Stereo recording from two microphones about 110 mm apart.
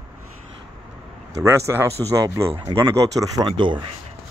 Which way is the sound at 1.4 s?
25° right (ahead or behind).